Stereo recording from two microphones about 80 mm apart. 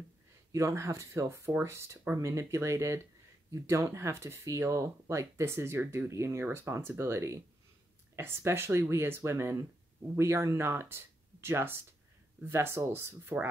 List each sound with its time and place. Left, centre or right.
0.5 s speech: right